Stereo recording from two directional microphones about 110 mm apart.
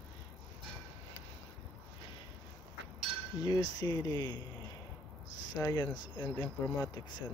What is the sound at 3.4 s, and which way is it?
Speech, 35° left (ahead or behind).